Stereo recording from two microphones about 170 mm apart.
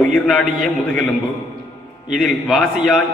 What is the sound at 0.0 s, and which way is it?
A man's voice, 5° left (ahead or behind).